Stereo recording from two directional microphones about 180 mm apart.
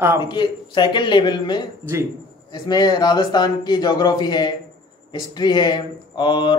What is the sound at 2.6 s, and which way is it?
Speech, 25° left (ahead or behind).